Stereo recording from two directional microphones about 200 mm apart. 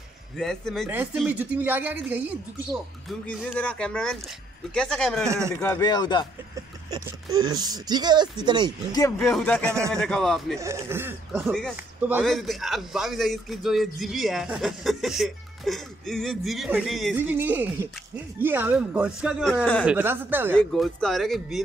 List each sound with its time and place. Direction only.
0.4 s a man's voice: centre (ahead or behind)
3.1 s a man's voice: 5° left (ahead or behind)
5.8 s speech: 20° left (ahead or behind)
6.9 s speech: 15° right (ahead or behind)
9.2 s a man's voice: 5° left (ahead or behind)
9.7 s speech: 15° right (ahead or behind)
9.9 s a man's voice: 5° left (ahead or behind)
10.6 s speech: 15° right (ahead or behind)
11.4 s a man's voice: 5° left (ahead or behind)
19.9 s speech: 10° right (ahead or behind)
20.5 s a man's voice: 5° left (ahead or behind)